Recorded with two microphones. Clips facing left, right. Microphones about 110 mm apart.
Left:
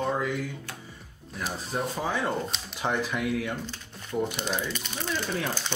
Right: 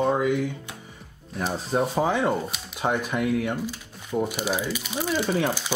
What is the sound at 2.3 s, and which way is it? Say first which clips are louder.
Speech: right 3 dB; 5° right (ahead or behind).